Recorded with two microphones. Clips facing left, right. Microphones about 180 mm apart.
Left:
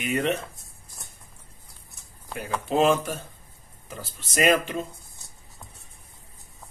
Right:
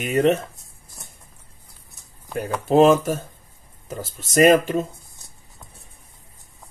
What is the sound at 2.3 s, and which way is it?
Speech, 45° right (ahead or behind).